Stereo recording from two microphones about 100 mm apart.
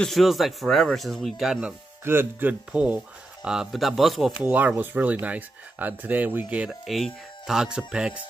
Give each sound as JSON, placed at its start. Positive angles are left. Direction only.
{"t": 0.0, "sound": "speech", "side_deg": 0}
{"t": 2.0, "sound": "speech", "side_deg": -20}
{"t": 3.4, "sound": "speech", "side_deg": -5}
{"t": 4.4, "sound": "speech", "side_deg": -15}
{"t": 6.7, "sound": "speech", "side_deg": 0}